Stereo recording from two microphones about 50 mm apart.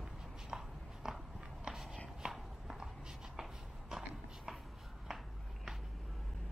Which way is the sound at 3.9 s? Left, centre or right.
Centre.